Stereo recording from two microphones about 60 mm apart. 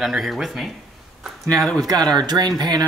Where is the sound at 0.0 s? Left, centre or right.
Centre.